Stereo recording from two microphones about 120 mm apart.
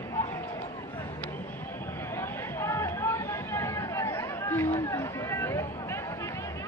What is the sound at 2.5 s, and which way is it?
Chatter, 25° left (ahead or behind).